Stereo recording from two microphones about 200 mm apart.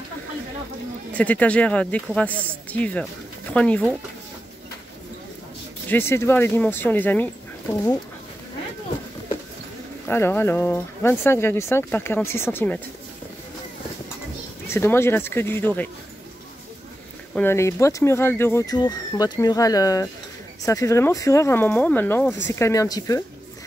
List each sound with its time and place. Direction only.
1.1 s speech: 5° left (ahead or behind)
5.9 s speech: 10° left (ahead or behind)
10.0 s speech: 10° left (ahead or behind)
14.7 s speech: 10° left (ahead or behind)
17.3 s speech: 10° left (ahead or behind)